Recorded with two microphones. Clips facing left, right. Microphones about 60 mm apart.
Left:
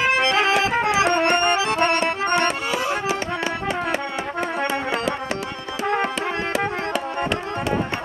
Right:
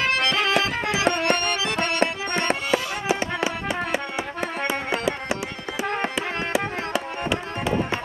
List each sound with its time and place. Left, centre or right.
0.0 s accordion: left
2.0 s music: left